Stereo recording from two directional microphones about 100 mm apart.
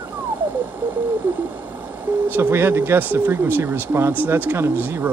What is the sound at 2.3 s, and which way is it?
Speech, 25° right (ahead or behind).